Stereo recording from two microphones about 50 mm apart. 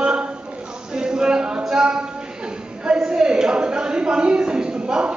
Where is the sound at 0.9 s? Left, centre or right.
Centre.